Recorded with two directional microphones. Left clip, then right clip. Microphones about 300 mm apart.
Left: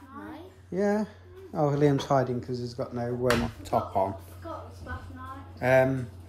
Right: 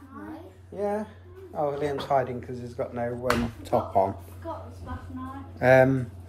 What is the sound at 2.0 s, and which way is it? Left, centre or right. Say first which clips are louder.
Speech: right 1 dB; left.